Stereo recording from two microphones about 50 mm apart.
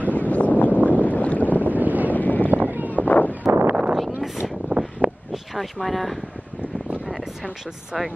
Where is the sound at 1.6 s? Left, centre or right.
Right.